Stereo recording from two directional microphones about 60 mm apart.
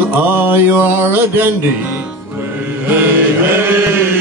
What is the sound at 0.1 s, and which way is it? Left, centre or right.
Mantra, right.